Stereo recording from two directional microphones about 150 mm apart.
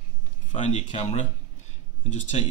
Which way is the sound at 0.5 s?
50° left (ahead or behind).